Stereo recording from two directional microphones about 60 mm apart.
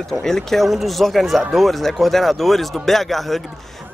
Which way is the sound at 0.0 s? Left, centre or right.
Centre.